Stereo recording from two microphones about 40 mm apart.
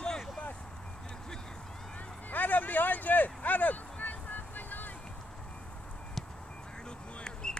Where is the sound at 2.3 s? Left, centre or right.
Left.